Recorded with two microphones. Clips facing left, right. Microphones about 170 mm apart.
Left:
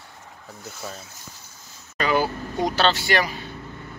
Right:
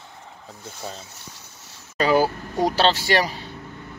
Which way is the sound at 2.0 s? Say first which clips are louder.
Right 3 dB; 35° right (ahead or behind).